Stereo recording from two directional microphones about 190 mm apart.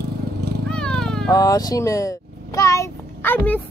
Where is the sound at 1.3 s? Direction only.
20° left (ahead or behind).